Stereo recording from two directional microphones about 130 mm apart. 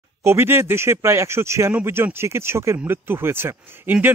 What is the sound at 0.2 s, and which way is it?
Speech, 20° right (ahead or behind).